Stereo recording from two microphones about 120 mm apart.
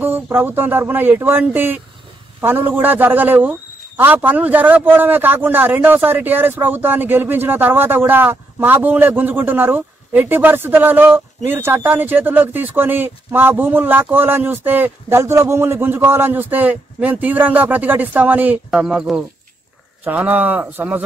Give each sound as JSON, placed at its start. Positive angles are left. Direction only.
{"t": 0.0, "sound": "a man's voice", "side_deg": -15}